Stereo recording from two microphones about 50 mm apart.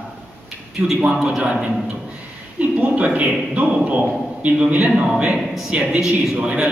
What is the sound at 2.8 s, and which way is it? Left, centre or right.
A man's voice, right.